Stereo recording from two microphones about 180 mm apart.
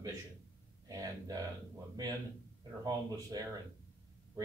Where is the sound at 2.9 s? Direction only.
20° right (ahead or behind).